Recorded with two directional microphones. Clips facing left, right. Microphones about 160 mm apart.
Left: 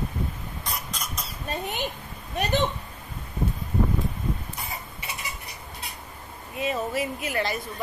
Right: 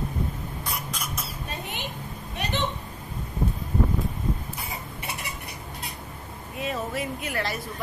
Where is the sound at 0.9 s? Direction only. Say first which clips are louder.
Right 1 dB; 10° right (ahead or behind).